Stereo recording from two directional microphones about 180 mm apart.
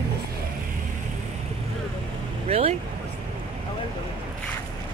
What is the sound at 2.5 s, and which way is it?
Vehicle, 35° right (ahead or behind).